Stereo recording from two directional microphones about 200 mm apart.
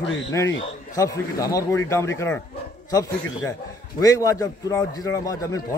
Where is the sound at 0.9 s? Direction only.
15° left (ahead or behind).